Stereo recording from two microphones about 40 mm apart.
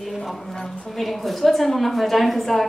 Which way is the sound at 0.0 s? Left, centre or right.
Centre.